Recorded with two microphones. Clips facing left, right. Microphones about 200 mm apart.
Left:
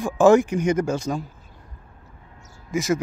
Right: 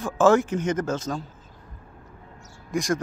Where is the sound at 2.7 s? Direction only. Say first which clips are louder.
Left 2 dB; 5° left (ahead or behind).